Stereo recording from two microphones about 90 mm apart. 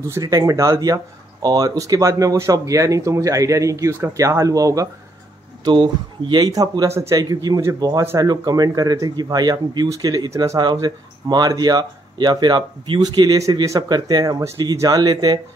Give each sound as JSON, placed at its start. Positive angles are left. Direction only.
{"t": 0.0, "sound": "speech", "side_deg": -35}
{"t": 5.6, "sound": "speech", "side_deg": -60}
{"t": 6.5, "sound": "speech", "side_deg": -45}
{"t": 10.6, "sound": "speech", "side_deg": -50}